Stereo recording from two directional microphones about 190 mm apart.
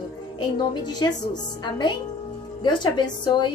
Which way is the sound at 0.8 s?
20° left (ahead or behind).